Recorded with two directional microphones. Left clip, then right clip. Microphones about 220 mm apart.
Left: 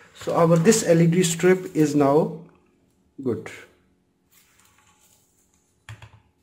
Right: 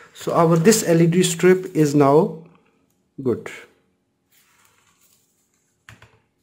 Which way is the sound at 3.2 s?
25° right (ahead or behind).